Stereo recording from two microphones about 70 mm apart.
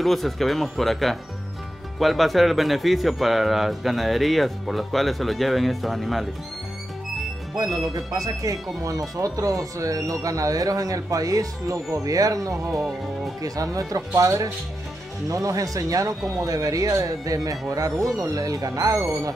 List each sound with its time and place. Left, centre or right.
0.0 s speech: centre
7.5 s speech: right